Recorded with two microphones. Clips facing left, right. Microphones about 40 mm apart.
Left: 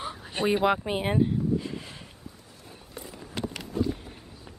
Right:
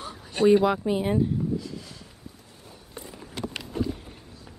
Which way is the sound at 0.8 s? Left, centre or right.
Left.